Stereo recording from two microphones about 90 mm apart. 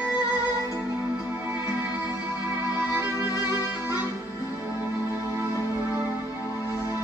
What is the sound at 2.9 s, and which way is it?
Music, 20° right (ahead or behind).